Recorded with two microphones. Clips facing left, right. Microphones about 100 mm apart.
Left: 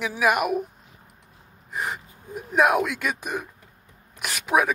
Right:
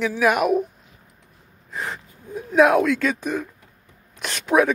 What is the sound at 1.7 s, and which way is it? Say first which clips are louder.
Speech: left 1 dB; 15° left (ahead or behind).